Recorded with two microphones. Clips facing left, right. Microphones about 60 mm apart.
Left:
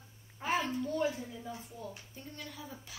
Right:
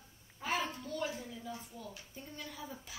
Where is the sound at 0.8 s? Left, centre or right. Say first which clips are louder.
Left 6 dB; left.